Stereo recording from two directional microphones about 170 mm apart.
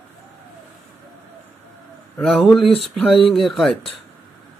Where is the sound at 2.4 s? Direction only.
Centre (ahead or behind).